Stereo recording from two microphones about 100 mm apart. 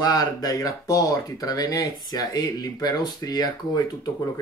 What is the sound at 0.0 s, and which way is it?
Speech, 40° left (ahead or behind).